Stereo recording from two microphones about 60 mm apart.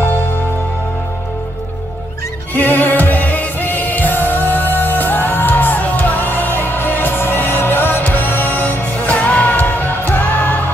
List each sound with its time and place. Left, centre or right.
2.5 s music: left